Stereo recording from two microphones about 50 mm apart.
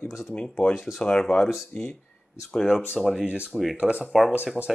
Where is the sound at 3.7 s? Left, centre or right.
Right.